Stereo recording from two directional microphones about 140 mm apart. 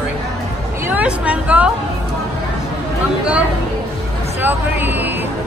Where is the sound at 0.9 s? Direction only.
10° right (ahead or behind).